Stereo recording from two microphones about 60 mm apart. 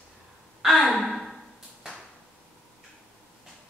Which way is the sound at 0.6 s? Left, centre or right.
Centre.